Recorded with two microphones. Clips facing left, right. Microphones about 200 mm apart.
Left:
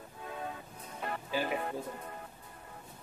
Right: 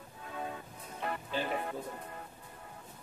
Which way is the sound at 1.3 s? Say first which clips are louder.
Left 3 dB; 10° left (ahead or behind).